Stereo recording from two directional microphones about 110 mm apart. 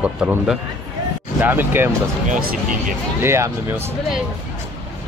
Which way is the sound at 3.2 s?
20° right (ahead or behind).